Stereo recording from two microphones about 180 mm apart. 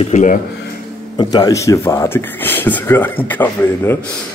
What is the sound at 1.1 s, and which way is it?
Speech, 25° left (ahead or behind).